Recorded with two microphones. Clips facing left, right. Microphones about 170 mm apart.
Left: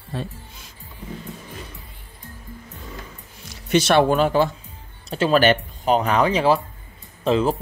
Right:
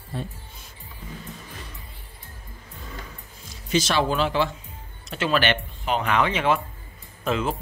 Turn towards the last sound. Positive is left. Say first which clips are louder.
# left 6 dB
turn(degrees=30)  # may be behind; listen again after turning